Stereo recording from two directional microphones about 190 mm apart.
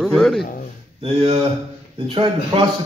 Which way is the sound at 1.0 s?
30° right (ahead or behind).